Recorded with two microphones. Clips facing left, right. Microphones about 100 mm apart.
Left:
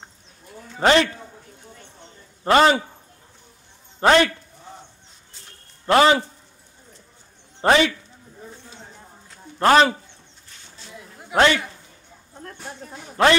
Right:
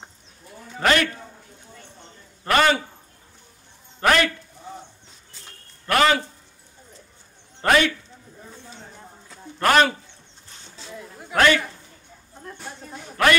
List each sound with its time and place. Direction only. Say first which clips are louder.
0.7 s speech: left 3 dB; 25° left (ahead or behind)
2.4 s speech: left 3 dB; 25° left (ahead or behind)
4.0 s a man's voice: left 4 dB; 25° left (ahead or behind)
5.9 s speech: left 4 dB; 25° left (ahead or behind)
7.6 s speech: left 2 dB; 25° left (ahead or behind)
9.6 s speech: left 3 dB; 25° left (ahead or behind)
11.2 s a man's voice: left 1 dB; 25° left (ahead or behind)
13.2 s speech: left 2 dB; 25° left (ahead or behind)